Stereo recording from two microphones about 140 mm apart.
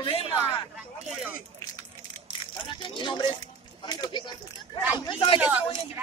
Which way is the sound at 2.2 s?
35° left (ahead or behind).